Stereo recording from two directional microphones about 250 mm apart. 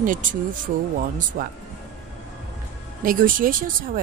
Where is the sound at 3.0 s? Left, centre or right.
Right.